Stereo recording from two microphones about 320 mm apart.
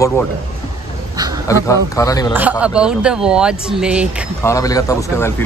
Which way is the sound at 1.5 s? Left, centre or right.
Centre.